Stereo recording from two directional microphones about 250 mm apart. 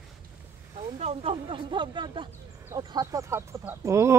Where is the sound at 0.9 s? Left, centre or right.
Right.